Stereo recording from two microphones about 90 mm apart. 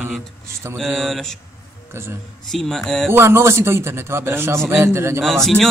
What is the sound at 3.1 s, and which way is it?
Speech, 25° right (ahead or behind).